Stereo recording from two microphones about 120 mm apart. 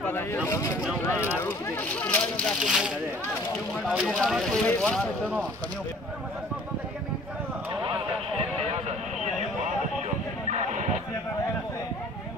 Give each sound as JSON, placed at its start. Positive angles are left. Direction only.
{"t": 0.0, "sound": "speech", "side_deg": 15}
{"t": 2.6, "sound": "speech", "side_deg": 0}
{"t": 3.9, "sound": "speech", "side_deg": -5}
{"t": 4.5, "sound": "speech", "side_deg": 10}
{"t": 10.5, "sound": "a sound", "side_deg": -85}